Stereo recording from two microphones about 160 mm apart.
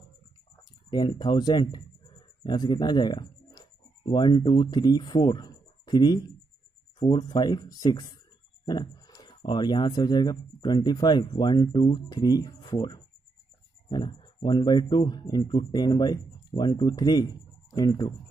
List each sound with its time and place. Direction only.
0.8 s speech: 25° left (ahead or behind)